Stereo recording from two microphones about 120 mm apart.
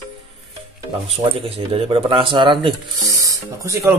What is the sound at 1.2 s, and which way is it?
Speech, 50° right (ahead or behind).